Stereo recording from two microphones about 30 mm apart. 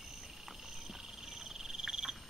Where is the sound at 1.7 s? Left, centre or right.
Right.